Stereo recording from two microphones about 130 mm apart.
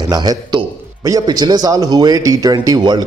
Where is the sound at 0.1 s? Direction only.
30° right (ahead or behind).